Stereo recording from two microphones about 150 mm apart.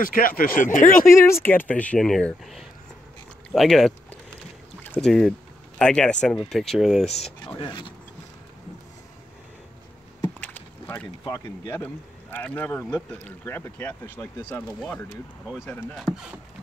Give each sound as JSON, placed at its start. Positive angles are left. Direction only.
{"t": 0.0, "sound": "speech", "side_deg": 70}
{"t": 1.0, "sound": "speech", "side_deg": 20}
{"t": 7.4, "sound": "speech", "side_deg": 30}
{"t": 10.4, "sound": "rowboat", "side_deg": 10}
{"t": 11.2, "sound": "speech", "side_deg": 20}
{"t": 15.6, "sound": "speech", "side_deg": 10}